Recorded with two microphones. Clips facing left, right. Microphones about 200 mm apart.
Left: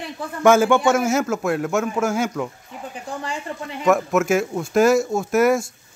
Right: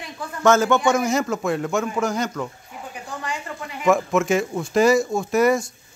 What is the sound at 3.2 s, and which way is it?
Speech, 30° left (ahead or behind).